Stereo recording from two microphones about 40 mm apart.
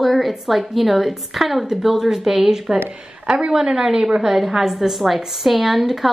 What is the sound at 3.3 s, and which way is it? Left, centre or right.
A woman's voice, centre.